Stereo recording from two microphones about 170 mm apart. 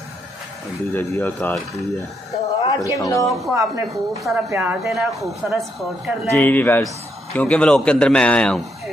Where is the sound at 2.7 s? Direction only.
20° left (ahead or behind).